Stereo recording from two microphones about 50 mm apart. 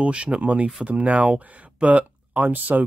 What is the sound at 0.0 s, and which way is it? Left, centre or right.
Speech, right.